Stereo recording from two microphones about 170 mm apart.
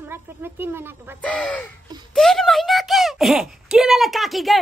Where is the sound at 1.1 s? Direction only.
10° left (ahead or behind).